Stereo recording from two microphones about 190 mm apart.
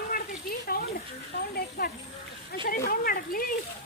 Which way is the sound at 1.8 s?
55° left (ahead or behind).